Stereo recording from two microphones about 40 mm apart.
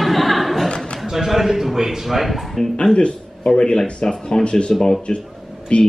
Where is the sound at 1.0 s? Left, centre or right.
Centre.